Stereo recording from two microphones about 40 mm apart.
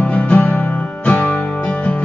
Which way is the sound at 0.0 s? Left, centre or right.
Left.